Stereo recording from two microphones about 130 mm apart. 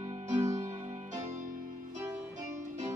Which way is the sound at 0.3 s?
25° right (ahead or behind).